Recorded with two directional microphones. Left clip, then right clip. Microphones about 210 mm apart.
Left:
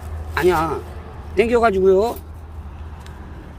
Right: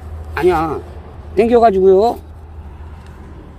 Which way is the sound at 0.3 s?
35° right (ahead or behind).